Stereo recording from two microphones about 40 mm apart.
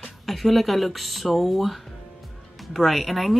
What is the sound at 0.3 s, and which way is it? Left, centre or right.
Speech, centre.